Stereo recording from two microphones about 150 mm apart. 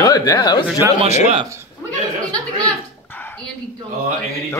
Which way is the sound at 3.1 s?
15° left (ahead or behind).